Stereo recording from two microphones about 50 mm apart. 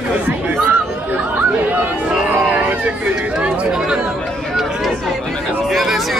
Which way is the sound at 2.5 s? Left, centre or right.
Right.